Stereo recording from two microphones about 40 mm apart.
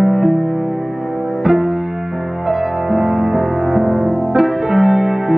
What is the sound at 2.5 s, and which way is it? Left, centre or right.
Music, centre.